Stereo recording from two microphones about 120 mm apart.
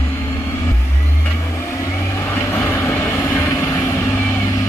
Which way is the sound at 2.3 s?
20° left (ahead or behind).